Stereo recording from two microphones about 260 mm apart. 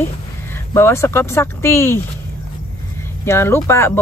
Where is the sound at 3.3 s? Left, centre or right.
Centre.